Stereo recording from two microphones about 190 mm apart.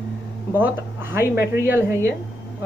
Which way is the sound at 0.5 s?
10° right (ahead or behind).